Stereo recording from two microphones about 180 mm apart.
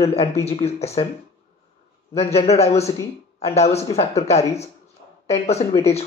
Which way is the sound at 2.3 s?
35° left (ahead or behind).